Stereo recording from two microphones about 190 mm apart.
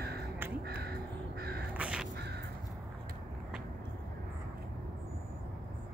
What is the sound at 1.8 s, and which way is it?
Crow, 5° right (ahead or behind).